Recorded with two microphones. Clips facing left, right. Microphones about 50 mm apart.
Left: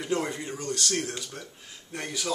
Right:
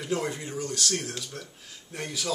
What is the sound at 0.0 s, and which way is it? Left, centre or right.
Speech, centre.